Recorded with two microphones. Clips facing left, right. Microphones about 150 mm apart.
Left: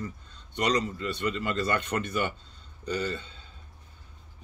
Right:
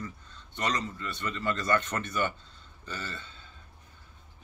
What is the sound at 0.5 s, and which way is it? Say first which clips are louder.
Speech: left 5 dB; 15° left (ahead or behind).